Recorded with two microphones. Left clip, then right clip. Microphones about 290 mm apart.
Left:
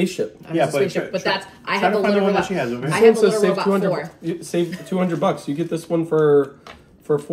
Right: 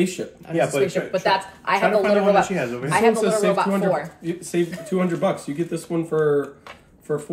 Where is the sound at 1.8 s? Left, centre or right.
Centre.